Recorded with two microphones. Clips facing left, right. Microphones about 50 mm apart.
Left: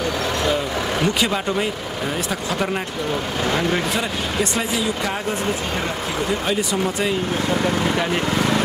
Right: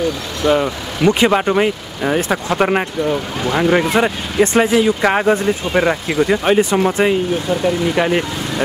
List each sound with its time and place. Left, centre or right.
0.5 s speech: right
6.4 s speech: right
7.9 s speech: right